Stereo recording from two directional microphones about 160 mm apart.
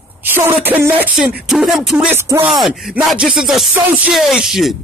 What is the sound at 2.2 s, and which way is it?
Speech, 15° right (ahead or behind).